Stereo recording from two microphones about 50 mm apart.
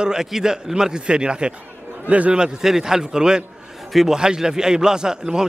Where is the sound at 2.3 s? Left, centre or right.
Centre.